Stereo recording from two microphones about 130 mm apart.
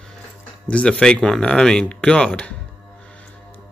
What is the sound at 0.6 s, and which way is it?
A man's voice, 10° left (ahead or behind).